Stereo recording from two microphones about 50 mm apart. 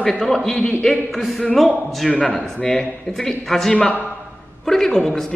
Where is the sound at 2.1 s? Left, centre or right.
Left.